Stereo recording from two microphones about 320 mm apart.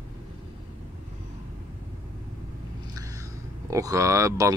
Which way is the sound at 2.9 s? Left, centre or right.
Centre.